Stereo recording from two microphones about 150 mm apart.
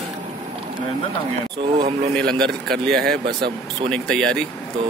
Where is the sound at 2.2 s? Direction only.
5° left (ahead or behind).